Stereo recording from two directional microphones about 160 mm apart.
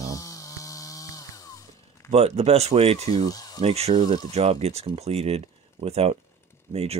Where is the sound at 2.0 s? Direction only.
40° right (ahead or behind).